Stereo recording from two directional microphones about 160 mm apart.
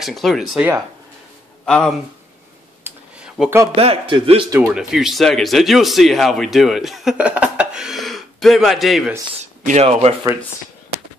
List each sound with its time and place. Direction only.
0.0 s speech: centre (ahead or behind)
1.7 s speech: 5° left (ahead or behind)
2.8 s a sound: 10° right (ahead or behind)
3.7 s a man's voice: 40° right (ahead or behind)
4.5 s speech: 10° right (ahead or behind)
9.4 s speech: 45° right (ahead or behind)